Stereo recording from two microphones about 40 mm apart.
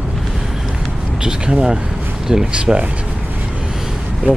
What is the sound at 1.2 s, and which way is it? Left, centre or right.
Speech, centre.